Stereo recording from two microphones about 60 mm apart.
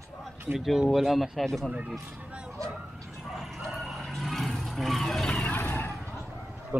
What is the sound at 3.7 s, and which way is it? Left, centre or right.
Vehicle, centre.